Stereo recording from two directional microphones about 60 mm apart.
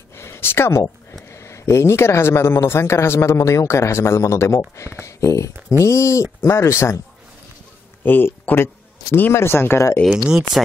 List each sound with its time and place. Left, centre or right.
0.1 s a sound: left
1.3 s speech: left
8.0 s speech: left
10.0 s speech: centre